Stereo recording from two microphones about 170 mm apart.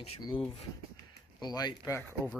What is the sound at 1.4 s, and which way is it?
Speech, 25° left (ahead or behind).